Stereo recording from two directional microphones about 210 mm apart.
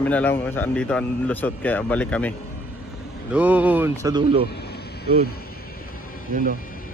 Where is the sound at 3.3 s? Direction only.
5° right (ahead or behind); by 4.4 s 25° right (ahead or behind).